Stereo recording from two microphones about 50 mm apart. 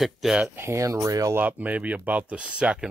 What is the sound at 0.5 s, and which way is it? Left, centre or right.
Speech, right.